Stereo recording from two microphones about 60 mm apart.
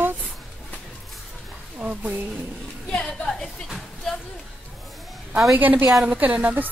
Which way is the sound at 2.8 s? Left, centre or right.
Centre.